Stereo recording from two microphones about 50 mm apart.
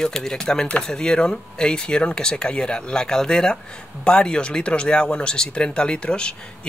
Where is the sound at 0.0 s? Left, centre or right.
Centre.